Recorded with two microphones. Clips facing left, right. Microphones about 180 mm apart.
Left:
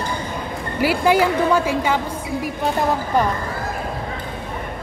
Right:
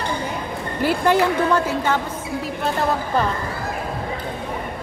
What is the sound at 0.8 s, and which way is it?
A woman's voice, 10° left (ahead or behind).